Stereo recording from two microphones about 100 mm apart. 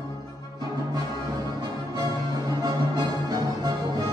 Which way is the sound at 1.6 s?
40° right (ahead or behind).